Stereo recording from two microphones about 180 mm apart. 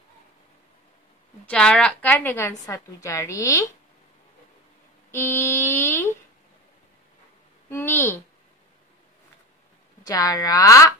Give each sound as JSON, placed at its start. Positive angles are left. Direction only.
{"t": 1.4, "sound": "a woman's voice", "side_deg": 5}
{"t": 5.1, "sound": "a woman's voice", "side_deg": 15}
{"t": 7.7, "sound": "a woman's voice", "side_deg": 15}
{"t": 10.0, "sound": "speech", "side_deg": 20}